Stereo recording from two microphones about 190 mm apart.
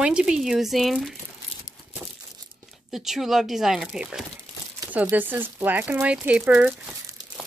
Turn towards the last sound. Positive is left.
turn(degrees=-5)  # may be behind; listen again after turning